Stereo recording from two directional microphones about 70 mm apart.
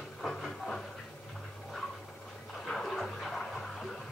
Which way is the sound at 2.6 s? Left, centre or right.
Centre.